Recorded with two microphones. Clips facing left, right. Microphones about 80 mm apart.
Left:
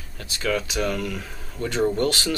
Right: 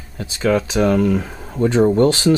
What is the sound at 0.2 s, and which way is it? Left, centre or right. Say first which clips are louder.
Speech: right 8 dB; right.